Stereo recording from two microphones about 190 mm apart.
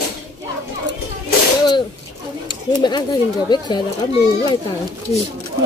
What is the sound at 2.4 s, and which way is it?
Speech, 25° left (ahead or behind).